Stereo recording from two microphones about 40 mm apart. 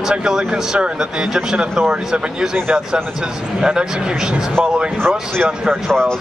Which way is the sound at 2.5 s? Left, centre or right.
Right.